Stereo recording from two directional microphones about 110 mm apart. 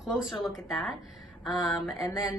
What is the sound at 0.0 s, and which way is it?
Speech, 5° right (ahead or behind).